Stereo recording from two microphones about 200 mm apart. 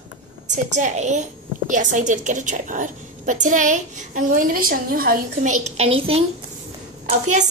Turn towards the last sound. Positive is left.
turn(degrees=-35)  # may be behind; listen again after turning